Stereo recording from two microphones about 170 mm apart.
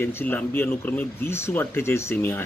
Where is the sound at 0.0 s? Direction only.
10° left (ahead or behind).